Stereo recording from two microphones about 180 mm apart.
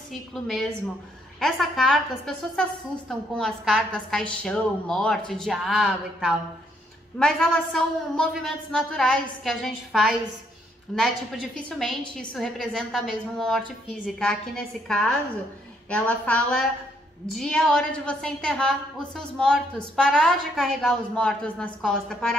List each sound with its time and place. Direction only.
0.1 s a woman's voice: centre (ahead or behind)